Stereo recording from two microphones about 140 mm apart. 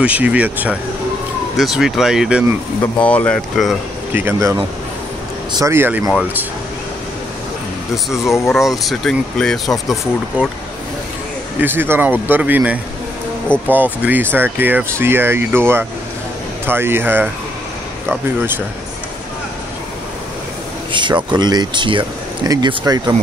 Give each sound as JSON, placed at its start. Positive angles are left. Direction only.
{"t": 0.0, "sound": "speech", "side_deg": -10}
{"t": 2.8, "sound": "speech", "side_deg": 10}
{"t": 4.1, "sound": "speech", "side_deg": -15}
{"t": 5.6, "sound": "speech", "side_deg": -15}
{"t": 7.9, "sound": "speech", "side_deg": 0}
{"t": 11.6, "sound": "speech", "side_deg": -15}
{"t": 13.5, "sound": "speech", "side_deg": 10}
{"t": 14.0, "sound": "speech", "side_deg": -15}
{"t": 20.9, "sound": "speech", "side_deg": -35}